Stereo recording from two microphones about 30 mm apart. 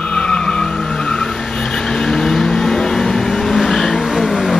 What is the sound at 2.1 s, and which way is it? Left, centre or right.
Vehicle, centre.